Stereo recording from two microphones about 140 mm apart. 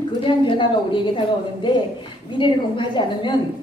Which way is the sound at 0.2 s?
35° left (ahead or behind).